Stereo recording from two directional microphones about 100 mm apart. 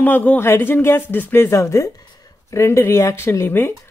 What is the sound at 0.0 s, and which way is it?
A woman's voice, 15° left (ahead or behind).